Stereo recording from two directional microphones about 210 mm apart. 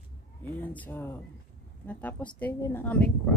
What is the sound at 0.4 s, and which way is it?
Speech, 10° left (ahead or behind).